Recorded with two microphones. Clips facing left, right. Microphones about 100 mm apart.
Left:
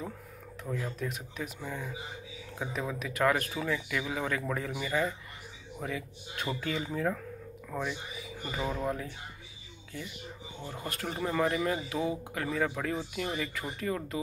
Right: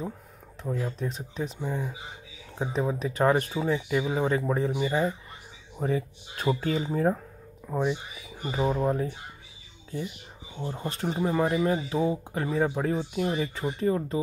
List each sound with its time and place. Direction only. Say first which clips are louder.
0.7 s speech: right 4 dB; 30° right (ahead or behind)
10.7 s speech: right 6 dB; 25° right (ahead or behind)